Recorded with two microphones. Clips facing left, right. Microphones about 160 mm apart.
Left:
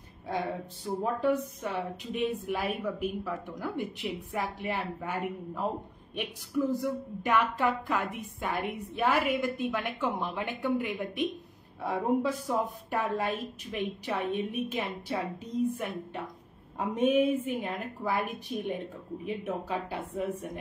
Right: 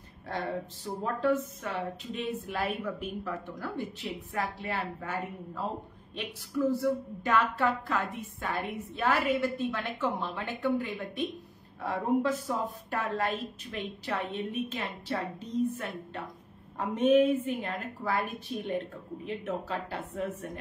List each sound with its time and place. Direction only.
0.3 s a woman's voice: 10° left (ahead or behind)